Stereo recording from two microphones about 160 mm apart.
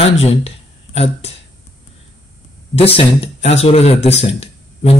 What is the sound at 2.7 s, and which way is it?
Speech, 35° left (ahead or behind).